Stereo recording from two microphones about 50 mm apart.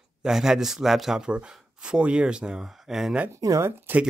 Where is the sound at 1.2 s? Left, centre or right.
Centre.